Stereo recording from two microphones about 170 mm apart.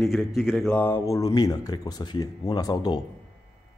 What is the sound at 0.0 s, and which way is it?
Speech, centre (ahead or behind).